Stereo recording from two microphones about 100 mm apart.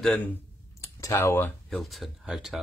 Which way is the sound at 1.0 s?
25° left (ahead or behind).